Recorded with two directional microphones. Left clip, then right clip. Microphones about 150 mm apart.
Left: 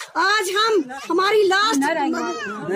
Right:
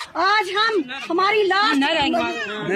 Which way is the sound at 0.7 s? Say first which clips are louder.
Left 1 dB; 10° left (ahead or behind).